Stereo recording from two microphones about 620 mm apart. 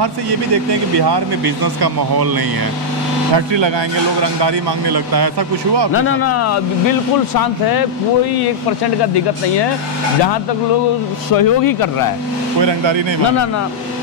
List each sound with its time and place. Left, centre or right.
0.9 s speech: right
3.3 s speech: right
5.9 s speech: left
11.3 s speech: left
12.5 s speech: right